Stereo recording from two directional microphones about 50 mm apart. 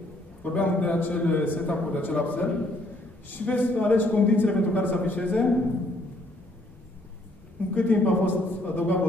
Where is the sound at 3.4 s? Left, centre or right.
Left.